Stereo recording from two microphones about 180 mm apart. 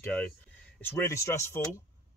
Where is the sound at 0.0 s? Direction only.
5° left (ahead or behind).